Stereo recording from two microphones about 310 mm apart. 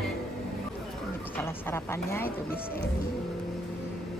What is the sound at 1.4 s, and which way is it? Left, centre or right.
Speech, centre.